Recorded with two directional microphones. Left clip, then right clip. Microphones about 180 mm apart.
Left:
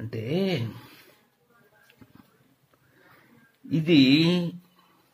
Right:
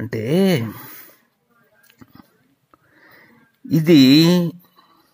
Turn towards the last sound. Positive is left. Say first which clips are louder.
# right 8 dB
turn(degrees=-40)  # may be behind; listen again after turning